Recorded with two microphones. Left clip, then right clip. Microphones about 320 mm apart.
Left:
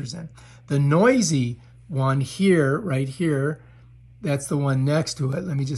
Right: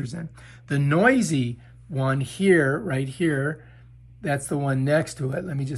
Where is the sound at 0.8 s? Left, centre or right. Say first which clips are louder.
Left 1 dB; centre.